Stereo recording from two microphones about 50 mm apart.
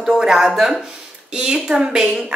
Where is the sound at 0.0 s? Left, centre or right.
Centre.